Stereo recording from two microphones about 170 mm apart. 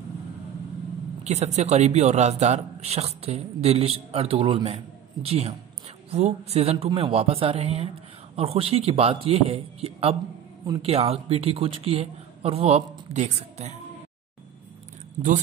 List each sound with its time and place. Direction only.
1.2 s a man's voice: 40° right (ahead or behind)